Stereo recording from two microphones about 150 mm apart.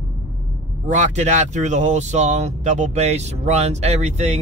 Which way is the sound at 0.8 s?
50° right (ahead or behind).